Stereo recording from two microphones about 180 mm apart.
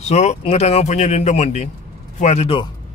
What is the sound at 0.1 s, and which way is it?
Speech, 40° left (ahead or behind).